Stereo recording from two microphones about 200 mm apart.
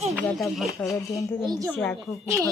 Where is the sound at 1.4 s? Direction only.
20° right (ahead or behind).